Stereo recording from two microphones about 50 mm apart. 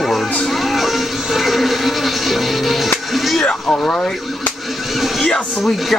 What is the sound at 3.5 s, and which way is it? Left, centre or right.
Speech, centre.